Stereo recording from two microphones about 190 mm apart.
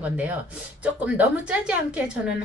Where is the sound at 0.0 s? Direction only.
5° right (ahead or behind).